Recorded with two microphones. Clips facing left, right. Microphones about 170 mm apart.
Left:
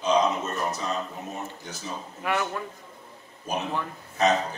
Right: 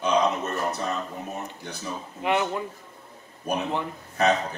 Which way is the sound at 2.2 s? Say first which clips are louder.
Right 4 dB; 20° right (ahead or behind).